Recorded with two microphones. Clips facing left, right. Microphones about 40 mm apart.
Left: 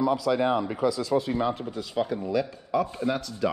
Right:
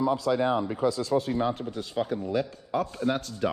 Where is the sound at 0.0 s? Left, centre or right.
Left.